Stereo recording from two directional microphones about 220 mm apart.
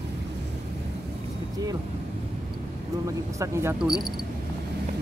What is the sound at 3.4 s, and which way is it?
Speech, 10° right (ahead or behind).